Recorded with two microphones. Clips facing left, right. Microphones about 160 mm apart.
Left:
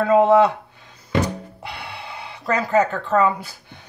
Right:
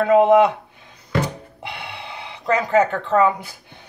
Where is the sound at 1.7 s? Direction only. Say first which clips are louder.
Right 1 dB; 15° right (ahead or behind).